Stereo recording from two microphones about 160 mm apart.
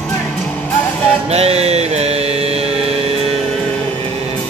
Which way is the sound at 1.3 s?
40° right (ahead or behind).